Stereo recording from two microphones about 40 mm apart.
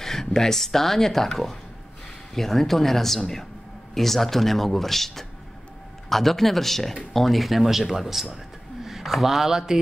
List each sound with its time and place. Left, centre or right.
0.0 s speech: centre